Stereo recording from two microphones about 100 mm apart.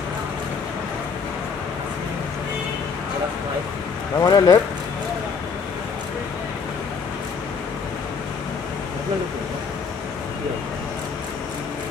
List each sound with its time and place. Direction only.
4.2 s speech: 35° left (ahead or behind)